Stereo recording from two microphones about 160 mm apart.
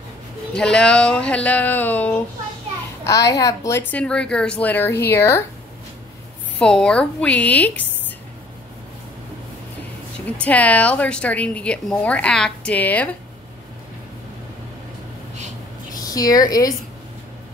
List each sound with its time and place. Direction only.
0.6 s speech: 5° left (ahead or behind)
3.0 s speech: 20° left (ahead or behind)
6.6 s speech: 5° left (ahead or behind)
10.3 s speech: 10° left (ahead or behind)
15.9 s speech: 20° left (ahead or behind)